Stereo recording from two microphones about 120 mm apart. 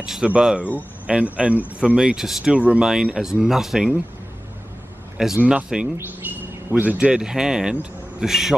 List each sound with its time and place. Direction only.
0.0 s a man's voice: 5° right (ahead or behind)
5.1 s a man's voice: 5° right (ahead or behind)
6.2 s bird: 15° right (ahead or behind)
6.7 s a man's voice: 15° right (ahead or behind)